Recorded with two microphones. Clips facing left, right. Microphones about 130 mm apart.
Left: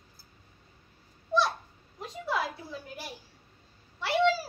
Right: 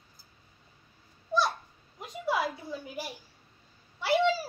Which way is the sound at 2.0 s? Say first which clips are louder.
Right 2 dB; 5° right (ahead or behind).